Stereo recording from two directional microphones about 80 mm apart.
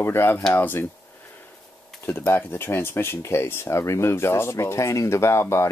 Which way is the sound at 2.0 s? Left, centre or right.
Left.